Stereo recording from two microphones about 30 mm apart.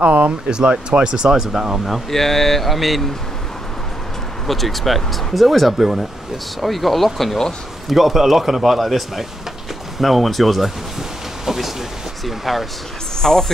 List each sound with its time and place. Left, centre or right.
0.0 s speech: right
0.5 s speech: right
2.0 s speech: centre
4.5 s speech: centre
11.4 s a sound: centre
12.3 s speech: centre
13.2 s speech: centre